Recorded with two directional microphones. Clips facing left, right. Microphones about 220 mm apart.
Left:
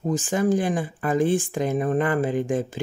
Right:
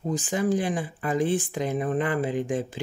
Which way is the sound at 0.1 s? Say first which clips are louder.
Left 3 dB; 45° left (ahead or behind).